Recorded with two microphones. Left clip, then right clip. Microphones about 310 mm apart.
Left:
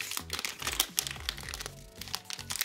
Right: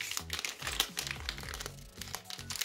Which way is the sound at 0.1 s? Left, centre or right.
Centre.